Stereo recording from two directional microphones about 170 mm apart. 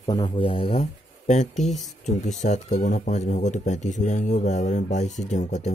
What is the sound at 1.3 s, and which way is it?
Speech, 45° left (ahead or behind).